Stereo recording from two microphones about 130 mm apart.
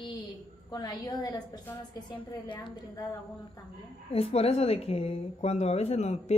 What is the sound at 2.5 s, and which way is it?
Speech, 35° left (ahead or behind).